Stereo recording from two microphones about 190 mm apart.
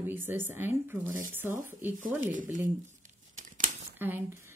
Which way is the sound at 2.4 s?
45° right (ahead or behind).